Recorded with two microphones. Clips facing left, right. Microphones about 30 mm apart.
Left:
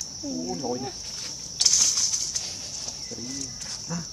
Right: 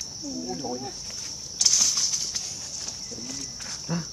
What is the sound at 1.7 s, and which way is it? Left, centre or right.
Bird, centre.